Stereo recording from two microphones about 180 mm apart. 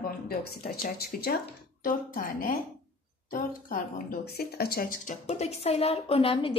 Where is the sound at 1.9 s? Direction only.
50° left (ahead or behind); by 6.5 s 30° left (ahead or behind).